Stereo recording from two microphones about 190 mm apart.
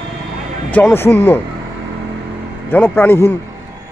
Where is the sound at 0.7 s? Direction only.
10° left (ahead or behind).